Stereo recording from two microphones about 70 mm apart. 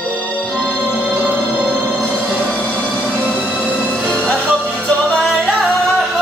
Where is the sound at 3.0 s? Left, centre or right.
Right.